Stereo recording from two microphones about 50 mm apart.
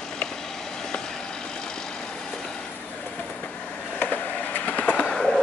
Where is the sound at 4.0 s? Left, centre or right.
Left.